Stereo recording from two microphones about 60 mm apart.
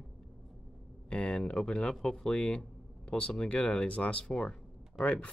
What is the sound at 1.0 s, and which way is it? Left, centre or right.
A woman's voice, centre.